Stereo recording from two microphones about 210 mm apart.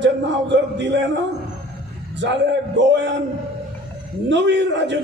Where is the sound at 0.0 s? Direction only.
60° right (ahead or behind).